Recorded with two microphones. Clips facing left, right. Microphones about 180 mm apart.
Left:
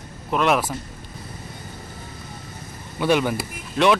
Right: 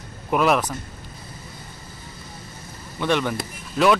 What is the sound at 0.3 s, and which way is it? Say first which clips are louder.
Speech: right 1 dB; 5° right (ahead or behind).